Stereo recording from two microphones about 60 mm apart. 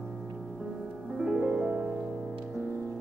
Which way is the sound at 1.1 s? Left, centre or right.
Centre.